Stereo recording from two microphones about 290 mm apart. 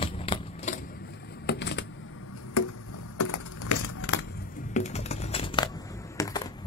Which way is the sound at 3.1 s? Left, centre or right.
Left.